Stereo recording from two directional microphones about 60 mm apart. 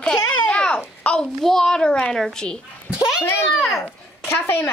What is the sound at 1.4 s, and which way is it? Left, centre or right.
Speech, centre.